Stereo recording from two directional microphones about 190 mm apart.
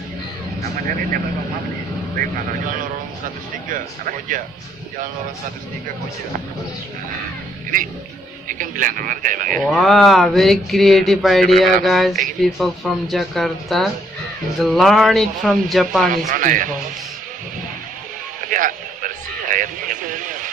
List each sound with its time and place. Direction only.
8.5 s speech: 45° right (ahead or behind)
9.6 s speech: centre (ahead or behind)
16.1 s speech: 45° right (ahead or behind)
18.5 s a sound: 45° right (ahead or behind)